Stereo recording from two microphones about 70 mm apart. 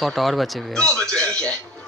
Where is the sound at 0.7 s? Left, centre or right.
Centre.